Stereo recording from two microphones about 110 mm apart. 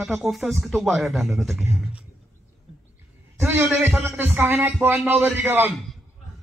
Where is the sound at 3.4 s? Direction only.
20° right (ahead or behind).